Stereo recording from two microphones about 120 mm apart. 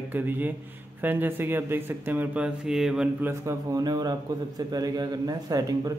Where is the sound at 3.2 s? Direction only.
25° right (ahead or behind).